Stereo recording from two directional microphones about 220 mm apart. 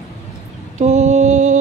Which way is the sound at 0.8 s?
30° right (ahead or behind).